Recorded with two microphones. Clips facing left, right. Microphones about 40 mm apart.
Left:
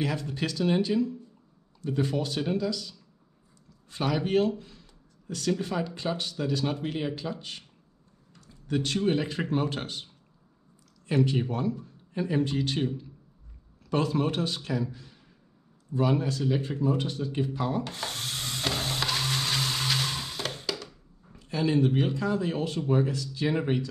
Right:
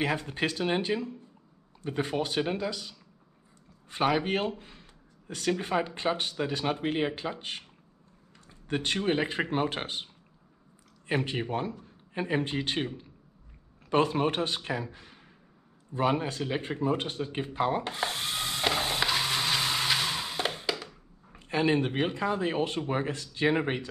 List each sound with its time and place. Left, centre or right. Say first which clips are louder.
0.0 s speech: right 1 dB; right
11.1 s speech: left 4 dB; right
17.9 s music: right 3 dB; centre
21.3 s speech: right 1 dB; right